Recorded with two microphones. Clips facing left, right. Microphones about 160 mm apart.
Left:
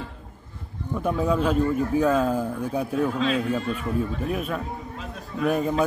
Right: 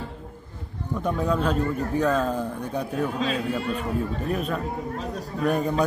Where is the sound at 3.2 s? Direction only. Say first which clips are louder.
Left 2 dB; 40° right (ahead or behind).